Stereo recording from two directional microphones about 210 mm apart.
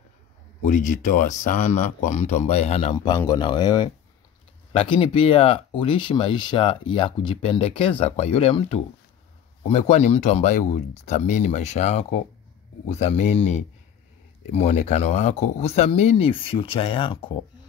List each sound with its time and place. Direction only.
0.7 s speech: 35° left (ahead or behind)